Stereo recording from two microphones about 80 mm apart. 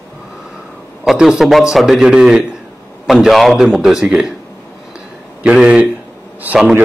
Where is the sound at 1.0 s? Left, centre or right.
Centre.